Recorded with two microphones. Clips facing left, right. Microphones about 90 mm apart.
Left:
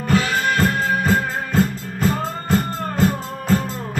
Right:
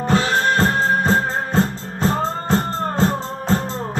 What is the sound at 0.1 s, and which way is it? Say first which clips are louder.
Music: right 1 dB; 30° right (ahead or behind).